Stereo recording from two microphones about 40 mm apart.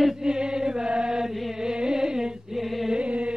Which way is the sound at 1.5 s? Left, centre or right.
Centre.